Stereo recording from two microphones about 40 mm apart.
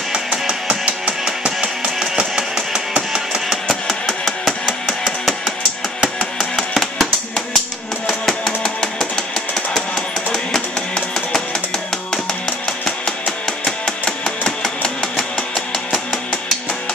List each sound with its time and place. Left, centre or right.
0.5 s music: right
3.6 s a sound: centre
6.7 s music: centre
8.1 s music: centre
13.7 s music: centre